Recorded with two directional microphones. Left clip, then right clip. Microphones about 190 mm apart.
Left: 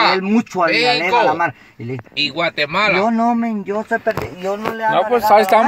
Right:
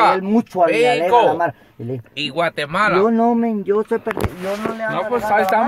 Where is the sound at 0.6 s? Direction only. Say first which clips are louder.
Right 2 dB; 60° left (ahead or behind).